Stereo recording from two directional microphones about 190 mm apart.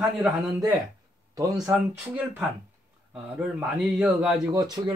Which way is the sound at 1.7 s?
5° right (ahead or behind).